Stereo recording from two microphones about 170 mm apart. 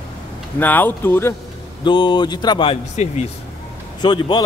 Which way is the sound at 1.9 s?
25° left (ahead or behind).